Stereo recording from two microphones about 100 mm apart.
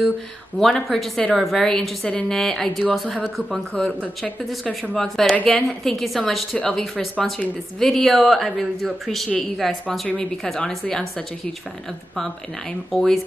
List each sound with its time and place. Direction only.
0.6 s a woman's voice: 5° left (ahead or behind)
4.9 s a woman's voice: 5° left (ahead or behind)
5.3 s a woman's voice: 15° left (ahead or behind)
5.7 s a woman's voice: 5° left (ahead or behind)
12.9 s a woman's voice: centre (ahead or behind)